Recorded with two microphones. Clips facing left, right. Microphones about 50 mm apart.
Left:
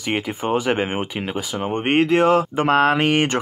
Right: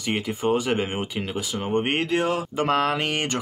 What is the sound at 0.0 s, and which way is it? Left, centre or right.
Speech, left.